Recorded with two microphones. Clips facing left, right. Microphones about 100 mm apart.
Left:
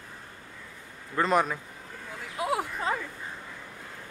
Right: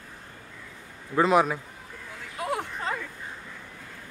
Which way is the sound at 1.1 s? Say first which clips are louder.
Right 4 dB; 5° right (ahead or behind).